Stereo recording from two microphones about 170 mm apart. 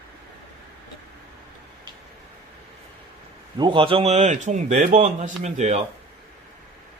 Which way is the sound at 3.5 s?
30° right (ahead or behind).